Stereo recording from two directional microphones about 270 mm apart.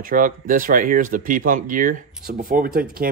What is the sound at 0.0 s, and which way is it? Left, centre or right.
Speech, right.